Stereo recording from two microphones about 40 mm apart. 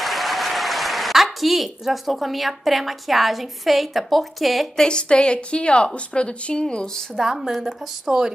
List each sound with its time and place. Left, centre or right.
0.0 s a woman's voice: centre
4.7 s a woman's voice: left
7.2 s speech: centre